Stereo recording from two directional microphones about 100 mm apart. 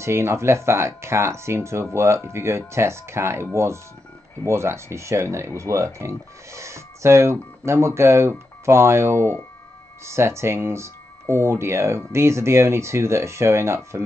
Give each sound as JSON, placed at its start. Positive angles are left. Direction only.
{"t": 0.0, "sound": "speech", "side_deg": -25}